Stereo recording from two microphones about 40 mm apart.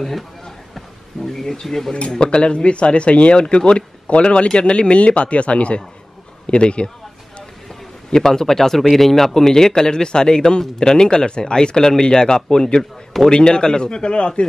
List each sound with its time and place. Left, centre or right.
0.7 s a sound: centre
2.0 s speech: left
8.1 s a man's voice: centre